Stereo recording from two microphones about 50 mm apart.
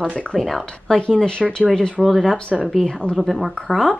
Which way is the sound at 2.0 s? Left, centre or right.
Centre.